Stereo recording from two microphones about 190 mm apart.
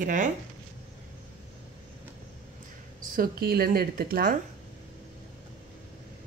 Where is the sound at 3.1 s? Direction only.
55° right (ahead or behind).